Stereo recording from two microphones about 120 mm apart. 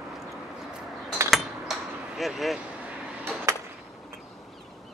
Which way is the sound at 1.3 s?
Centre (ahead or behind).